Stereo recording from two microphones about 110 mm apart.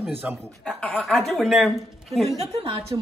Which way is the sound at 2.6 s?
55° right (ahead or behind).